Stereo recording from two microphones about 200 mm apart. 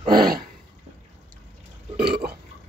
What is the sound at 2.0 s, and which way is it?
Burping, 50° right (ahead or behind).